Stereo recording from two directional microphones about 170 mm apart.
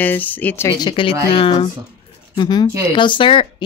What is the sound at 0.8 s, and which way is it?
Speech, 30° left (ahead or behind).